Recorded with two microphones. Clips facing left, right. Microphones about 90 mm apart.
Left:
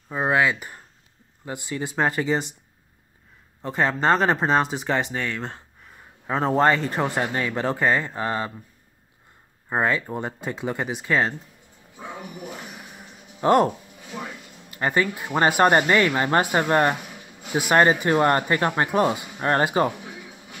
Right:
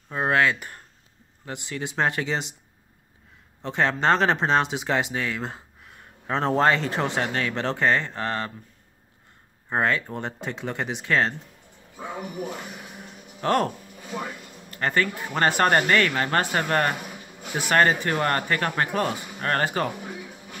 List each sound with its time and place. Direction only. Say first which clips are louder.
0.1 s speech: left 1 dB; 5° left (ahead or behind)
3.6 s speech: left 1 dB; 5° left (ahead or behind)
9.7 s speech: left 1 dB; 5° left (ahead or behind)
13.4 s speech: left 5 dB; 15° left (ahead or behind)
14.7 s speech: left 2 dB; 10° left (ahead or behind)